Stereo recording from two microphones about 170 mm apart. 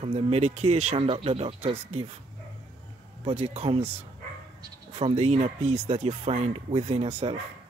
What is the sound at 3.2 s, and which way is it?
Speech, 35° right (ahead or behind).